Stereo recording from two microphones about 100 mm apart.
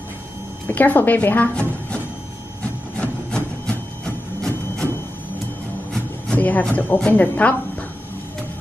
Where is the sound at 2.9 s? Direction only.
10° left (ahead or behind).